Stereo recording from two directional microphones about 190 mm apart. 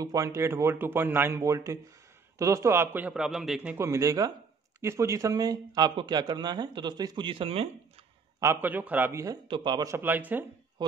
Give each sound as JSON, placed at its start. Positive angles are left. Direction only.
{"t": 0.0, "sound": "a man's voice", "side_deg": -20}
{"t": 8.4, "sound": "a man's voice", "side_deg": -15}
{"t": 10.8, "sound": "speech", "side_deg": -20}